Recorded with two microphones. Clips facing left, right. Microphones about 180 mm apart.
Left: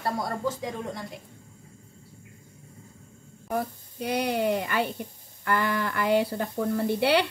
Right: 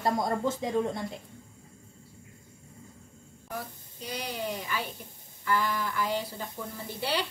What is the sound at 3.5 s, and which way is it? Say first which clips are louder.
A woman's voice: left 9 dB; 60° left (ahead or behind).